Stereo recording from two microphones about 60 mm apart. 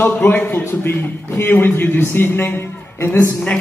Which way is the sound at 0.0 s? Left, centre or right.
Left.